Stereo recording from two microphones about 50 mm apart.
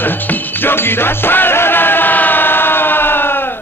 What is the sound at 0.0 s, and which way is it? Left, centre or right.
Music, left.